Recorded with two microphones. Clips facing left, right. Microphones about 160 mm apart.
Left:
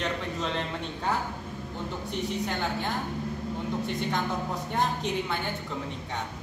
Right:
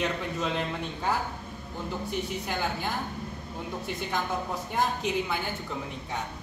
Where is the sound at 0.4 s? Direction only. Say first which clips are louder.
Right 3 dB; 5° right (ahead or behind).